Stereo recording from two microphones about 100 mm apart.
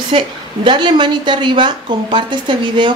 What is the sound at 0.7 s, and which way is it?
Speech, 50° right (ahead or behind).